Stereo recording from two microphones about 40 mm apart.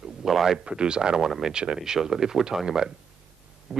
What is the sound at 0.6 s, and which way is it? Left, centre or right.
Speech, right.